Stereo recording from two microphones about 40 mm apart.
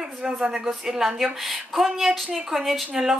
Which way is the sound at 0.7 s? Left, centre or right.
Centre.